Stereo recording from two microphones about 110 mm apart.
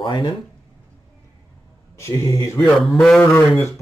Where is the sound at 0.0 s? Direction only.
45° left (ahead or behind).